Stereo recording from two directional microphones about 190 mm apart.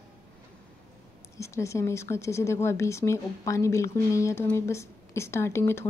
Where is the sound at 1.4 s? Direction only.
15° left (ahead or behind).